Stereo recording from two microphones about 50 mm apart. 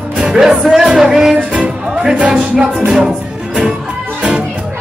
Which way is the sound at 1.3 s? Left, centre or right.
Right.